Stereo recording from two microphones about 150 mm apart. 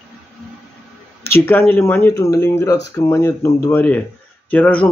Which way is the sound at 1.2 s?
15° left (ahead or behind).